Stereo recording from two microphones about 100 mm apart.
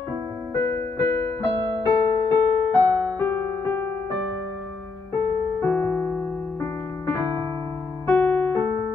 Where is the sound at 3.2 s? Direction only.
20° left (ahead or behind).